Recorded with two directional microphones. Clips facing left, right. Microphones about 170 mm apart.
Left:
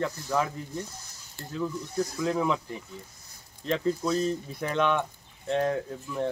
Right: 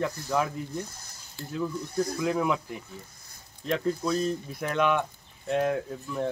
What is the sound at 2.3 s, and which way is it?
Speech, 5° right (ahead or behind).